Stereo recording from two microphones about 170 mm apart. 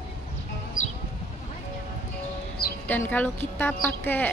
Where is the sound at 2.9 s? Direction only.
10° left (ahead or behind).